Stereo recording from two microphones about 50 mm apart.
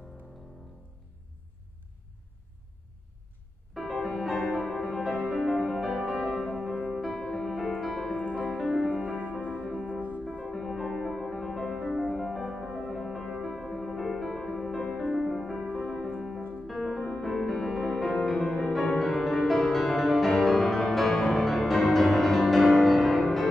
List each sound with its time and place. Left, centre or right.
3.7 s music: centre
8.2 s music: left
9.8 s music: right
10.3 s music: centre
12.7 s music: centre
15.7 s music: centre
16.2 s piano: centre
16.6 s music: centre